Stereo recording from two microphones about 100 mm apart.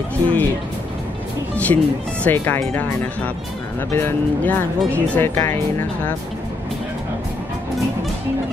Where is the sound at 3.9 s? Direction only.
20° left (ahead or behind).